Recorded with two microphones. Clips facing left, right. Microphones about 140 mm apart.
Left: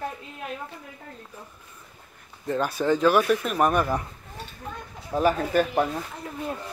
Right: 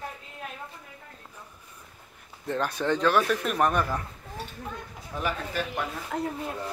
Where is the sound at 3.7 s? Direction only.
15° left (ahead or behind).